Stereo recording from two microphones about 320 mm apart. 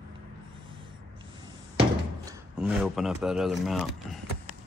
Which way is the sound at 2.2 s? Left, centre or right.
Centre.